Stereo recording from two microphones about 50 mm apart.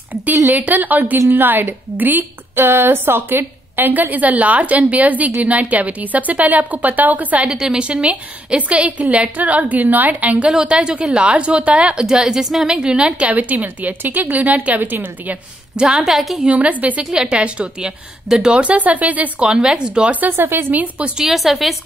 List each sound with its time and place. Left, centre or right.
0.1 s a sound: right
0.5 s a woman's voice: right
2.5 s a woman's voice: right
7.4 s a woman's voice: centre; by 10.4 s right
10.4 s a woman's voice: centre
13.3 s a woman's voice: right
15.7 s a woman's voice: centre
16.1 s a woman's voice: centre
16.4 s a woman's voice: right
17.0 s a woman's voice: centre
20.2 s speech: right
20.7 s a woman's voice: right
21.2 s a woman's voice: centre